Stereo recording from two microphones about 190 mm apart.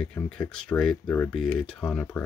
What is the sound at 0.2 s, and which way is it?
Speech, 10° left (ahead or behind).